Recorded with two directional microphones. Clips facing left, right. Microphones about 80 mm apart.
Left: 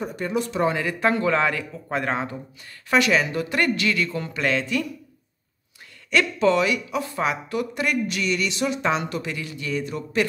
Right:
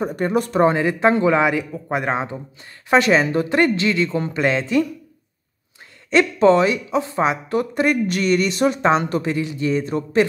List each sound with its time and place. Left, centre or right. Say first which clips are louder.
0.0 s speech: right 6 dB; right
6.0 s speech: right 6 dB; right